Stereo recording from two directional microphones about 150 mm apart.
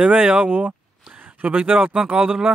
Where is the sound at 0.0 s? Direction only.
10° right (ahead or behind).